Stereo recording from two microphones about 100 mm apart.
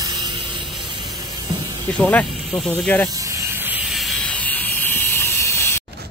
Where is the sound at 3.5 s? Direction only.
20° right (ahead or behind).